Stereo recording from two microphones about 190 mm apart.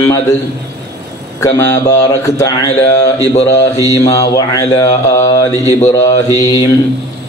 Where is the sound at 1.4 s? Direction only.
15° left (ahead or behind).